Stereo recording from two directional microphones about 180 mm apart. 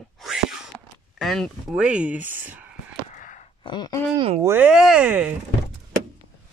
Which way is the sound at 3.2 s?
45° left (ahead or behind).